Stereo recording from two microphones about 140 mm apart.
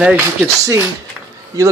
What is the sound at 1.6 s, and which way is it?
Speech, 25° right (ahead or behind).